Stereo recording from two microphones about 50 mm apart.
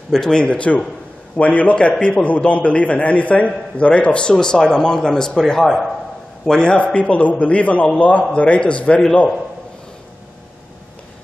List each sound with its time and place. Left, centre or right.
0.1 s a man's voice: centre